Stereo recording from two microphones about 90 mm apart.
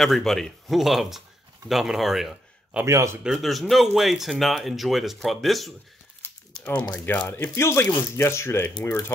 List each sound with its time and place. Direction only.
0.0 s speech: 5° left (ahead or behind)
2.8 s speech: 30° right (ahead or behind)
3.3 s speech: centre (ahead or behind)
6.5 s speech: 15° left (ahead or behind)
7.2 s speech: 25° left (ahead or behind)